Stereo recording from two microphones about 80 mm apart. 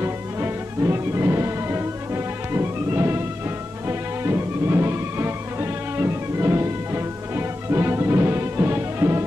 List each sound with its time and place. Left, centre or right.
0.0 s music: right